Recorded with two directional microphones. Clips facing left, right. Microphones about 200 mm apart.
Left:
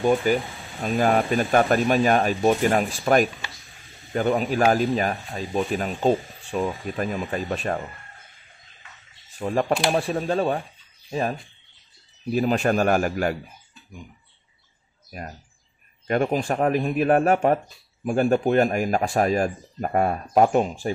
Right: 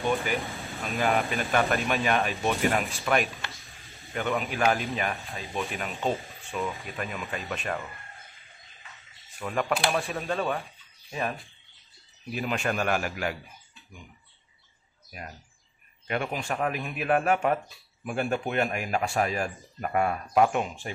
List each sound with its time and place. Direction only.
0.3 s speech: 40° left (ahead or behind)
3.4 s a sound: centre (ahead or behind)
4.1 s speech: 35° left (ahead or behind)
9.4 s speech: 35° left (ahead or behind)
15.0 s speech: 40° left (ahead or behind)